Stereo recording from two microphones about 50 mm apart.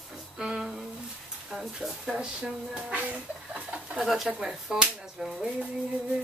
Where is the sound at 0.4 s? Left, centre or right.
Centre.